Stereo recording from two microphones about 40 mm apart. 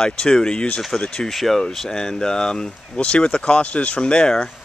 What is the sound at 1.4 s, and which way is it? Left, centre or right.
Speech, centre.